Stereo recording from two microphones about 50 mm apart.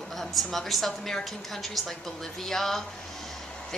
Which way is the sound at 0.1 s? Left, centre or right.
Centre.